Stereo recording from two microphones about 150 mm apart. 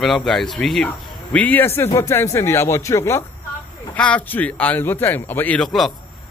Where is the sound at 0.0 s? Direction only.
Centre (ahead or behind).